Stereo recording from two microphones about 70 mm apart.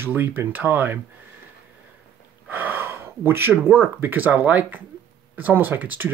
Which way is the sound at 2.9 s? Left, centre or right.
Right.